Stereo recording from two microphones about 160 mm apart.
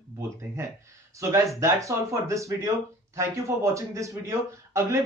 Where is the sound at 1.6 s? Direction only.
20° right (ahead or behind).